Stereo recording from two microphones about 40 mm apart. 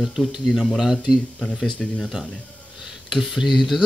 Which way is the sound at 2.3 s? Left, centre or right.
Centre.